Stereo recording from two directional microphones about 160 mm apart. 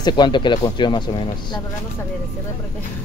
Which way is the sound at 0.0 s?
25° left (ahead or behind).